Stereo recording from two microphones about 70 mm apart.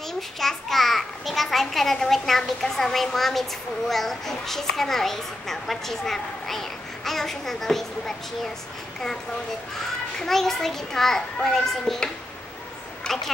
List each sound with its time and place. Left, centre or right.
0.4 s a child's voice: centre
10.1 s a child's voice: centre
13.0 s a sound: centre